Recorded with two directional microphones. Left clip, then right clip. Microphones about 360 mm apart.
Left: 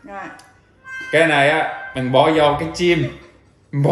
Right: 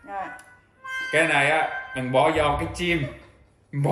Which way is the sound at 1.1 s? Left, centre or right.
Centre.